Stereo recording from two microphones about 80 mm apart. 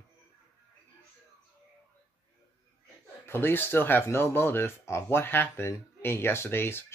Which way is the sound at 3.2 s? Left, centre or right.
Left.